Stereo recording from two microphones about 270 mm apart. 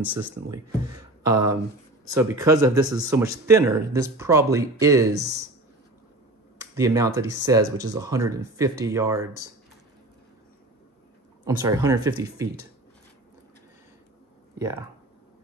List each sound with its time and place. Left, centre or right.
0.8 s a sound: centre
2.1 s speech: centre
6.6 s speech: centre
11.4 s speech: centre
14.6 s speech: centre